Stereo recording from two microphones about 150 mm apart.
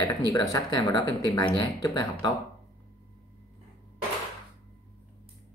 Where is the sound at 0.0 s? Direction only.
25° left (ahead or behind).